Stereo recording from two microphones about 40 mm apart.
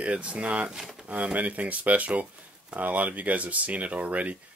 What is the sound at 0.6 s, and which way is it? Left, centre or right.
Speech, centre.